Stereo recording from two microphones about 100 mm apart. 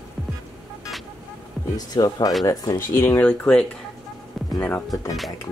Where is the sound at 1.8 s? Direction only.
40° left (ahead or behind).